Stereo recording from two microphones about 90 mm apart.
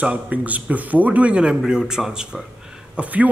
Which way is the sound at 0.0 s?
15° right (ahead or behind).